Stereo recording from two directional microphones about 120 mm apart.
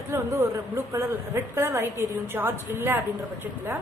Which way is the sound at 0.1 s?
25° right (ahead or behind).